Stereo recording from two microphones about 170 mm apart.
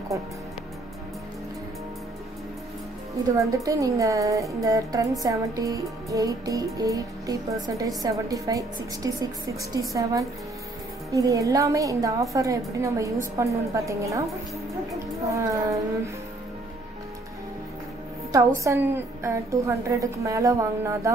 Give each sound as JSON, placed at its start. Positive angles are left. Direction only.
{"t": 0.1, "sound": "music", "side_deg": -20}
{"t": 3.3, "sound": "music", "side_deg": -20}
{"t": 12.4, "sound": "a woman's voice", "side_deg": -20}
{"t": 15.2, "sound": "music", "side_deg": -20}
{"t": 18.3, "sound": "a woman's voice", "side_deg": -15}